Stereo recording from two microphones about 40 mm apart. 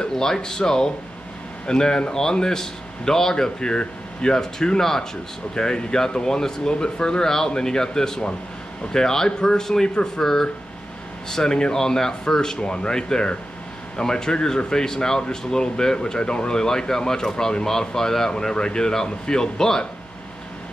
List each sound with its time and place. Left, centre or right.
0.1 s speech: centre
5.5 s speech: left